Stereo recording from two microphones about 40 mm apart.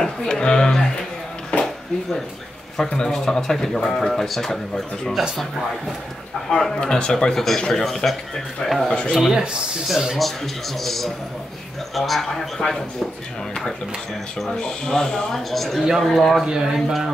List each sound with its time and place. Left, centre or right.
0.0 s a sound: left
1.5 s a sound: left
2.8 s speech: centre
6.5 s speech: centre
7.3 s speech: centre
9.3 s speech: right
10.1 s speech: centre
12.5 s speech: centre
14.9 s speech: centre
15.3 s speech: centre
16.4 s speech: centre